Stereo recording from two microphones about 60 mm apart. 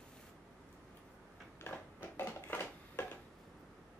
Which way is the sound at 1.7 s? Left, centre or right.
Left.